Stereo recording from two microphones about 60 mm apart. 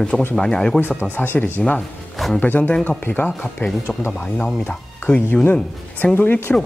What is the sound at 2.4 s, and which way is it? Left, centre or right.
Speech, left.